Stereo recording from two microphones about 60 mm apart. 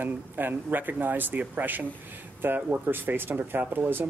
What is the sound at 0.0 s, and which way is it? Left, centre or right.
Speech, right.